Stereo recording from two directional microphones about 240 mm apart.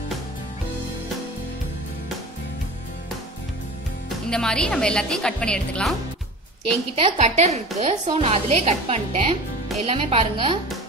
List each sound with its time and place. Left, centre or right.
4.3 s a woman's voice: centre
7.0 s a woman's voice: right